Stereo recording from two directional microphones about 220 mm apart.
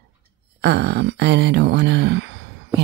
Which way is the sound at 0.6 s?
50° right (ahead or behind).